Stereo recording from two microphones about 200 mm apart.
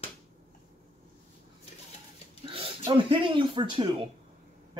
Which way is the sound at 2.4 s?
25° right (ahead or behind).